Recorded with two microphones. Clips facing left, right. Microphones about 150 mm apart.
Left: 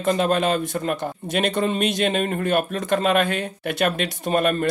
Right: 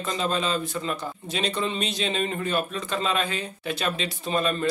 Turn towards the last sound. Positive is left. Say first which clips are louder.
# left 5 dB
turn(degrees=55)  # may be behind; listen again after turning